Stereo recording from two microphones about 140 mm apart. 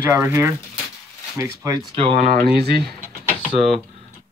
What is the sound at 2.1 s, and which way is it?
Speech, 60° right (ahead or behind).